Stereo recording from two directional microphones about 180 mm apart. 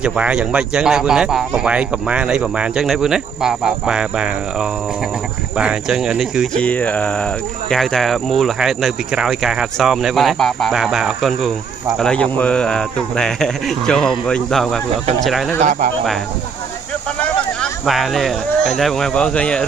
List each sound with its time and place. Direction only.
0.0 s speech: 5° right (ahead or behind)
15.6 s speech: 50° right (ahead or behind)
17.2 s speech: 5° left (ahead or behind)